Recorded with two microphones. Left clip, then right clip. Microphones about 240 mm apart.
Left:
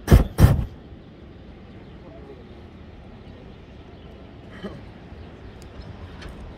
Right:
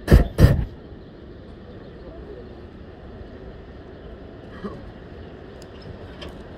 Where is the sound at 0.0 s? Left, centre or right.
Left.